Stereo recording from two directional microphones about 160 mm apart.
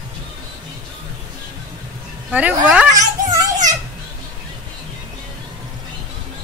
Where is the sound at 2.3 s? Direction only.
10° right (ahead or behind).